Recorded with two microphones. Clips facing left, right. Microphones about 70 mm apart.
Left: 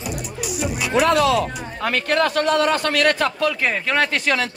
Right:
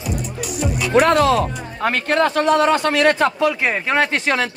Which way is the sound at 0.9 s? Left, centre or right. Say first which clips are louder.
Right 3 dB; right.